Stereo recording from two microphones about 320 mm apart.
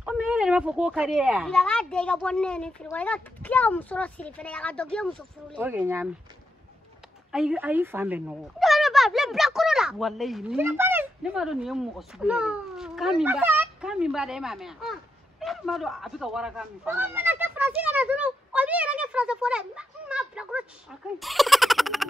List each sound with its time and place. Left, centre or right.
0.0 s a woman's voice: centre
7.3 s a woman's voice: centre